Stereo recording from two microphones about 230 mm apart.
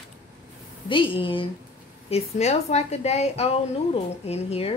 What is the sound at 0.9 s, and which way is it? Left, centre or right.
A woman's voice, left.